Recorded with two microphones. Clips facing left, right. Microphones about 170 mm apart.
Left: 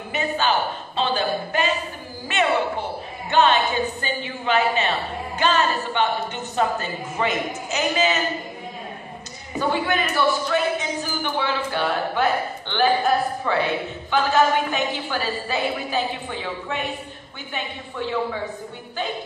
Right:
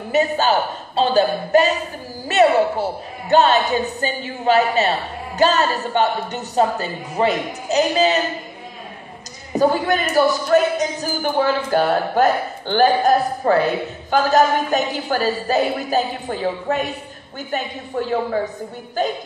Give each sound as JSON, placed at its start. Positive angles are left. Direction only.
{"t": 0.1, "sound": "a man's voice", "side_deg": -40}
{"t": 9.5, "sound": "a man's voice", "side_deg": -40}